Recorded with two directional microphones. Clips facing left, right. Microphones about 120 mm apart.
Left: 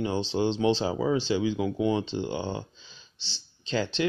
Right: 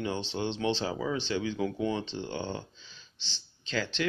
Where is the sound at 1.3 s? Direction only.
10° left (ahead or behind).